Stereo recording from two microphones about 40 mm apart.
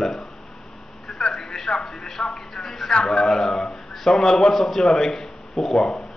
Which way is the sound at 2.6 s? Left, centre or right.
Centre.